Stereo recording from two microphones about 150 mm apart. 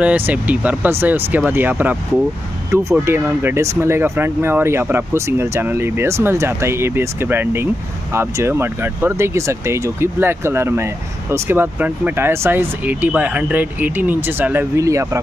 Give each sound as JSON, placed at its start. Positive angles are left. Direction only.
{"t": 0.0, "sound": "speech", "side_deg": -10}